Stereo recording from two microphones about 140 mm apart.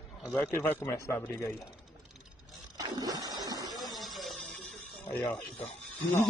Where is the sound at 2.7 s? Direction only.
25° right (ahead or behind).